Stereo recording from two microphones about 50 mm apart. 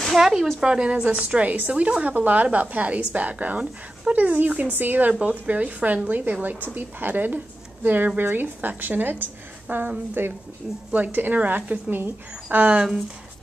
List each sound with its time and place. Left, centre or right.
0.0 s speech: centre
0.6 s a woman's voice: centre; by 12.7 s right